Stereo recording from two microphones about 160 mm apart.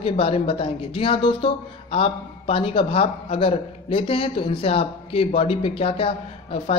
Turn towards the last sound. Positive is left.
turn(degrees=35)  # may be behind; listen again after turning